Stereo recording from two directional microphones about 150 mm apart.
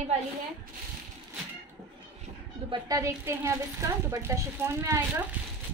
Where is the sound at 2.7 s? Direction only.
20° right (ahead or behind).